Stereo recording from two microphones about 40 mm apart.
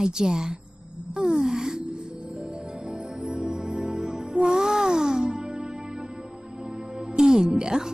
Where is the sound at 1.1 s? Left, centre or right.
Centre.